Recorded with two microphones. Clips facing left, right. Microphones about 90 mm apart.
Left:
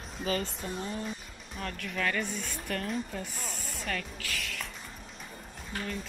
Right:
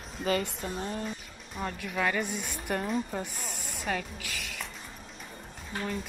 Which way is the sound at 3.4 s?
5° right (ahead or behind).